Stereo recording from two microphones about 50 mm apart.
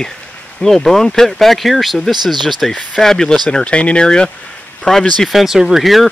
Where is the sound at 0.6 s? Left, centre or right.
Centre.